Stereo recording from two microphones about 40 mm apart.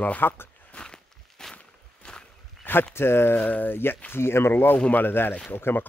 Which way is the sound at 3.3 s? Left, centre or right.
Left.